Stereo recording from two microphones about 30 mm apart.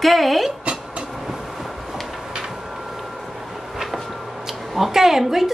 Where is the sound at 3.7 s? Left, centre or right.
Centre.